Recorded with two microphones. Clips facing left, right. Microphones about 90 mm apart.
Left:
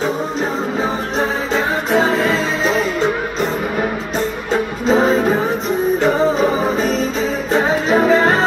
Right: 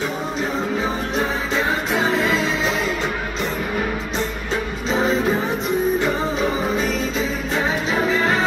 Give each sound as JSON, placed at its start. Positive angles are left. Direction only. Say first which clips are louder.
{"t": 2.0, "sound": "music", "louder": "left 5 dB", "side_deg": 35}
{"t": 4.8, "sound": "music", "louder": "left 6 dB", "side_deg": 45}
{"t": 7.5, "sound": "music", "louder": "left 7 dB", "side_deg": 40}